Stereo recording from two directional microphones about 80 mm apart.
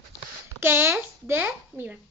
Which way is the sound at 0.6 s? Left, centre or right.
Right.